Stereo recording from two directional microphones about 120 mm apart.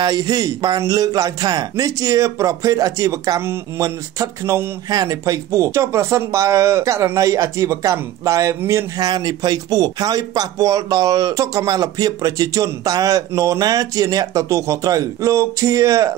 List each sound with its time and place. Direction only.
0.0 s a man's voice: 30° right (ahead or behind)